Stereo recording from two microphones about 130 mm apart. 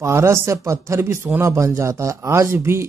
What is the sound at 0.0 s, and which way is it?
Speech, 20° right (ahead or behind).